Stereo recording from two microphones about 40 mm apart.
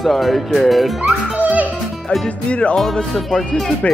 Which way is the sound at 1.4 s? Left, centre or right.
Right.